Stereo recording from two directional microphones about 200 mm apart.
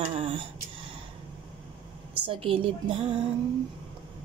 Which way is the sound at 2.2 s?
25° right (ahead or behind).